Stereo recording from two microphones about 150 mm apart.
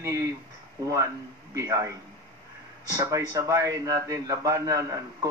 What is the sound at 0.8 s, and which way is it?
A man's voice, 20° right (ahead or behind).